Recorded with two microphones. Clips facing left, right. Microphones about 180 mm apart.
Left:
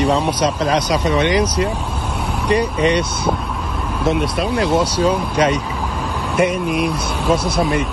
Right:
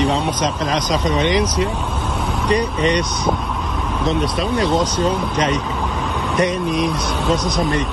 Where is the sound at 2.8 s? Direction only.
10° left (ahead or behind).